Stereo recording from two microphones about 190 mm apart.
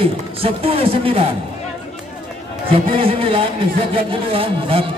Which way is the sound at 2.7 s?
30° right (ahead or behind).